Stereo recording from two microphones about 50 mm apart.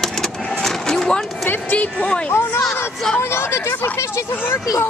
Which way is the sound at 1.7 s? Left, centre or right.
Left.